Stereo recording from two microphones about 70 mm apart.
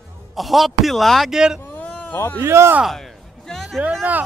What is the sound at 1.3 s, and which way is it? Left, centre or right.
Speech, centre.